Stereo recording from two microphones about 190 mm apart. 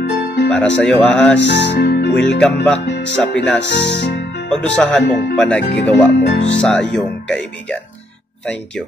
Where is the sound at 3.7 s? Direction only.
65° left (ahead or behind).